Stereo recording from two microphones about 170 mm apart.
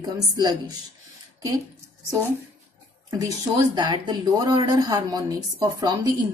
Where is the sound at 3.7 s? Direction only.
25° right (ahead or behind).